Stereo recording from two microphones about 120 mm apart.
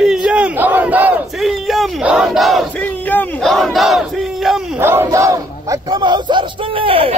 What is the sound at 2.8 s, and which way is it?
Battle cry, 15° left (ahead or behind).